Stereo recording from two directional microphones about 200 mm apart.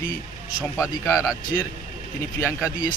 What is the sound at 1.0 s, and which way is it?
Speech, 15° left (ahead or behind).